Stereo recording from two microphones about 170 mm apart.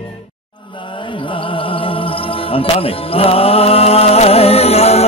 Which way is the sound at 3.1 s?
35° left (ahead or behind).